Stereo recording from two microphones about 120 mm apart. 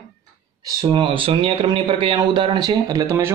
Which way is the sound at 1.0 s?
45° right (ahead or behind).